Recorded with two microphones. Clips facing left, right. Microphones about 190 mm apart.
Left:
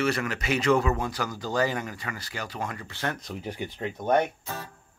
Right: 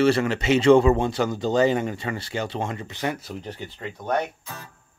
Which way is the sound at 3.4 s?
10° left (ahead or behind).